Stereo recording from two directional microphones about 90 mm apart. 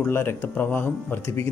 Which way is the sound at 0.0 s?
25° left (ahead or behind).